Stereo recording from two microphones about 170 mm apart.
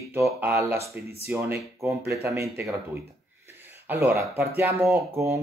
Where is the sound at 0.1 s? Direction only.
15° right (ahead or behind).